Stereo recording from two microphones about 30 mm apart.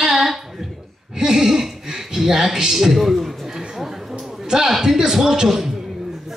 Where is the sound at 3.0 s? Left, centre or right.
Centre.